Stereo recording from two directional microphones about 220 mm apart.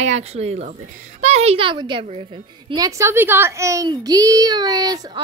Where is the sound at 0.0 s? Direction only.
30° right (ahead or behind).